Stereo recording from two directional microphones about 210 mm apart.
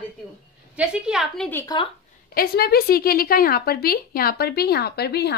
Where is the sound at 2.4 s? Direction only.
45° left (ahead or behind).